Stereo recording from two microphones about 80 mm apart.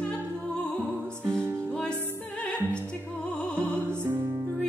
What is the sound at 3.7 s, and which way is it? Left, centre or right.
Music, right.